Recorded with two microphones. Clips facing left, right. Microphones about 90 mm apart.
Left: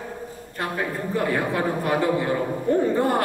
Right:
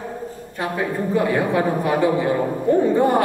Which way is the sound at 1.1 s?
5° right (ahead or behind).